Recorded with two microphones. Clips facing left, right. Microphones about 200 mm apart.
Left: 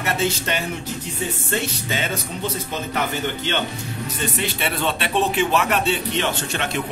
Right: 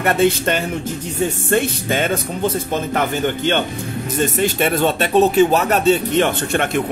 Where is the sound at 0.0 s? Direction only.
55° right (ahead or behind).